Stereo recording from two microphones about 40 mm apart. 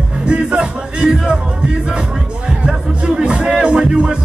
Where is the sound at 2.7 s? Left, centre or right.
Centre.